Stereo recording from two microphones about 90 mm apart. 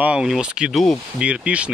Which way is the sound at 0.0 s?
10° right (ahead or behind).